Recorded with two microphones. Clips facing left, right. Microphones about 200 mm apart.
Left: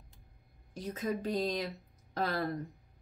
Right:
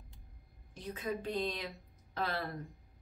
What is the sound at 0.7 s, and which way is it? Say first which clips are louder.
A woman's voice: left 3 dB; 40° left (ahead or behind).